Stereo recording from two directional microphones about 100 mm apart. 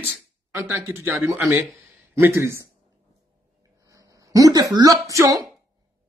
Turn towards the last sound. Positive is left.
turn(degrees=-35)  # may be behind; listen again after turning